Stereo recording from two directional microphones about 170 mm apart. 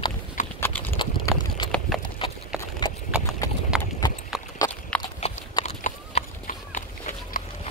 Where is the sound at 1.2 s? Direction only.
25° left (ahead or behind).